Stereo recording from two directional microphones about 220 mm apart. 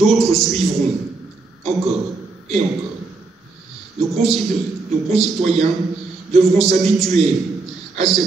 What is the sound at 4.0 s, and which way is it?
A man's voice, centre (ahead or behind).